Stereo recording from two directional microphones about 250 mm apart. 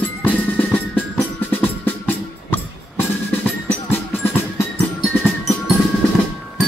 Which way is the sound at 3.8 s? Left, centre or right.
Centre.